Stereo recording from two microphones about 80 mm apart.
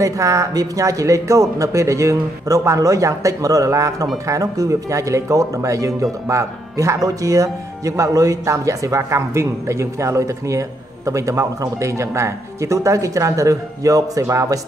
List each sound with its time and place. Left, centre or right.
0.0 s speech: right